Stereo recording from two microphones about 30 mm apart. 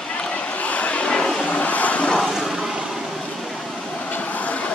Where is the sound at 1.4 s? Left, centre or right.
Left.